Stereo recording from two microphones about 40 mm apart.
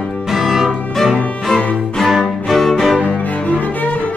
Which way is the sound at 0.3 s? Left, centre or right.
Centre.